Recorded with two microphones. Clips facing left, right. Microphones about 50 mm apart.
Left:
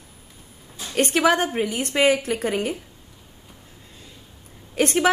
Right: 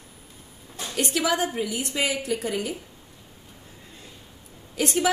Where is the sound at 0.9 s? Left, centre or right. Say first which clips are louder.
Left 6 dB; left.